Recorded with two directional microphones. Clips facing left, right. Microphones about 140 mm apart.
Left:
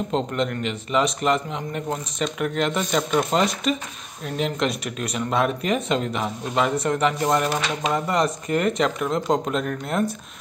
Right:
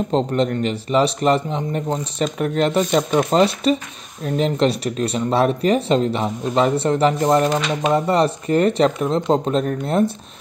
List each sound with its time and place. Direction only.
0.1 s speech: 35° right (ahead or behind)